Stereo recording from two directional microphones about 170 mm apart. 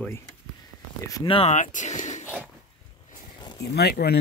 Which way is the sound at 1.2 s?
35° left (ahead or behind).